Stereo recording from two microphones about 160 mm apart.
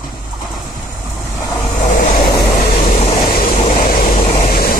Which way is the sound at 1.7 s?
45° left (ahead or behind).